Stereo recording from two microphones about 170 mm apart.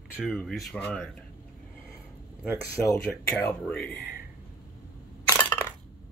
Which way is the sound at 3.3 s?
5° left (ahead or behind).